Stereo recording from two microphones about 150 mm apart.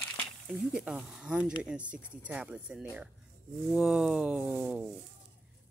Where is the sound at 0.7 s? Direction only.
5° right (ahead or behind).